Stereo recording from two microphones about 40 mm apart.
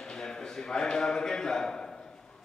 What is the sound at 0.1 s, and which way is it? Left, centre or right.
A man's voice, centre.